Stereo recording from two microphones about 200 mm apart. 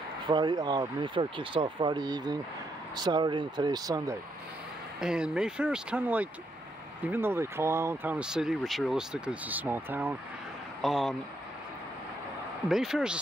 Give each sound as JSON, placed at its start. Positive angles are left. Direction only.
{"t": 0.3, "sound": "speech", "side_deg": -20}
{"t": 5.0, "sound": "speech", "side_deg": -5}
{"t": 12.6, "sound": "speech", "side_deg": 0}